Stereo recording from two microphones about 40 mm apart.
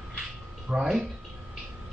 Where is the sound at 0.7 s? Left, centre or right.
Centre.